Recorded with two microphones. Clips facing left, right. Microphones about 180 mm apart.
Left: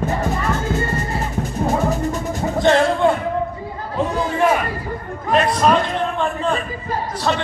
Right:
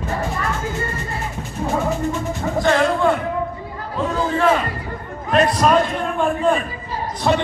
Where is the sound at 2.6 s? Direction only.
20° left (ahead or behind).